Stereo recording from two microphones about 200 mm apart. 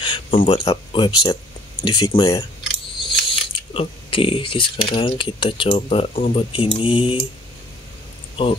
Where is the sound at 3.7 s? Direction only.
25° left (ahead or behind).